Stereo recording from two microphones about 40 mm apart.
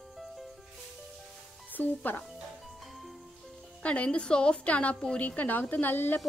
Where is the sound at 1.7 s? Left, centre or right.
Left.